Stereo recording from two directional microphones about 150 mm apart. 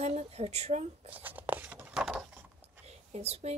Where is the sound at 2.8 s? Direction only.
45° right (ahead or behind).